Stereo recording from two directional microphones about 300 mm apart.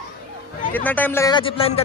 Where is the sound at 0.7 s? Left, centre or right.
Centre.